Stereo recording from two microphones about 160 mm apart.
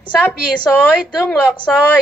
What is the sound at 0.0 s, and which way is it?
Speech, 5° right (ahead or behind).